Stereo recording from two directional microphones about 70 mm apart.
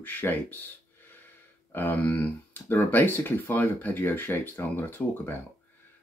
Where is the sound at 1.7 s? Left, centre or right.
Left.